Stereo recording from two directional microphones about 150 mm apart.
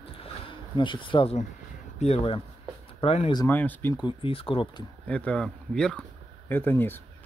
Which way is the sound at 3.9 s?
35° left (ahead or behind).